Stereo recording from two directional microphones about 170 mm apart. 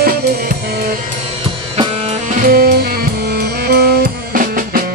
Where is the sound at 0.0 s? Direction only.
60° right (ahead or behind).